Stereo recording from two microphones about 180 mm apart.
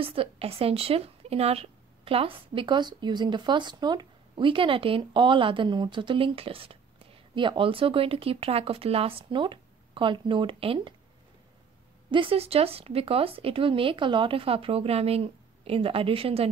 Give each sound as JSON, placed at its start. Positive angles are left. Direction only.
{"t": 0.0, "sound": "speech", "side_deg": -30}
{"t": 12.1, "sound": "speech", "side_deg": -30}